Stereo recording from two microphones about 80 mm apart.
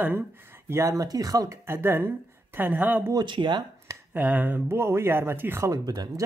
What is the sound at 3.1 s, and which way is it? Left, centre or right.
Speech, right.